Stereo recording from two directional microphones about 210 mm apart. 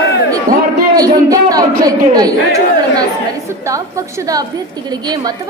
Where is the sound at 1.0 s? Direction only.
15° right (ahead or behind).